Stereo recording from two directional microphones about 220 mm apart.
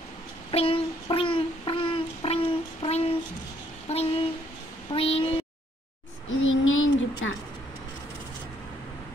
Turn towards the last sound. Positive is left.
turn(degrees=65)  # may be behind; listen again after turning